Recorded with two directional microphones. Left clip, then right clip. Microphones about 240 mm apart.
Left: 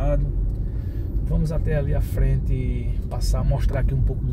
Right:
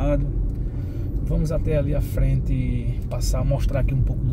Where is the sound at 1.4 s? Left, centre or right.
Centre.